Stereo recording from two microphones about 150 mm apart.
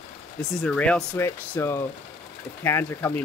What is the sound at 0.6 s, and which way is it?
Speech, 5° left (ahead or behind).